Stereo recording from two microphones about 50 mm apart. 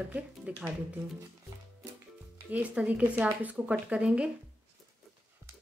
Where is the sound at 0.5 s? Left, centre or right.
Right.